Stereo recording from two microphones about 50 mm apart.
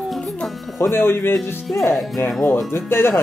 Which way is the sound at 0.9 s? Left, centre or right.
Left.